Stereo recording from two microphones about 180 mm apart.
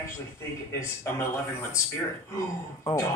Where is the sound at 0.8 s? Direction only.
15° left (ahead or behind).